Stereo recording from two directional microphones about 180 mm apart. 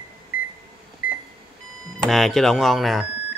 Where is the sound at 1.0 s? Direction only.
55° left (ahead or behind).